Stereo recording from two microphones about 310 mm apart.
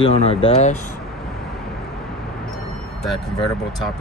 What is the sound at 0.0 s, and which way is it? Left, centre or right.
Speech, centre.